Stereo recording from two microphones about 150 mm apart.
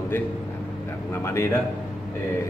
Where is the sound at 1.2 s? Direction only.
15° left (ahead or behind).